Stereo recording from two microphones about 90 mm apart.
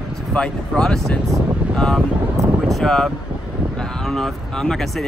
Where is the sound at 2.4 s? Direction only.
35° right (ahead or behind).